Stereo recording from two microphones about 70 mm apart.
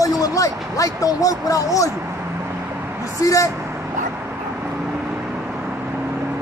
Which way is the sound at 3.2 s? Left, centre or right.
Left.